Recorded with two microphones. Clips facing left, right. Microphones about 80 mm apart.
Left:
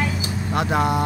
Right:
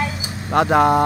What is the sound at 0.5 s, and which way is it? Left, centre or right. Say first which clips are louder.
Speech: right 7 dB; right.